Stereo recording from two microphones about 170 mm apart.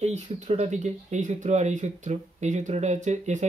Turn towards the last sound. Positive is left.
turn(degrees=-45)  # may be behind; listen again after turning